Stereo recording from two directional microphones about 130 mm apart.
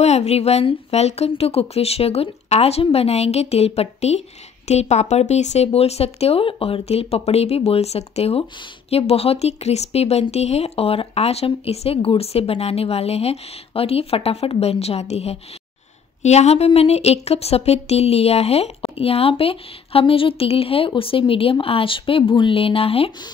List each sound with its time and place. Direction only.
0.0 s a woman's voice: 55° left (ahead or behind)